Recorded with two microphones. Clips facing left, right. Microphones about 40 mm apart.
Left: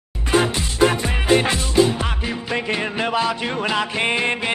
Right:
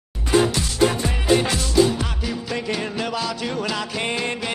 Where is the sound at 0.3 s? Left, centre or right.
Left.